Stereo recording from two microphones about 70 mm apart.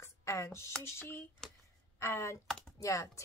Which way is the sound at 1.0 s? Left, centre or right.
Left.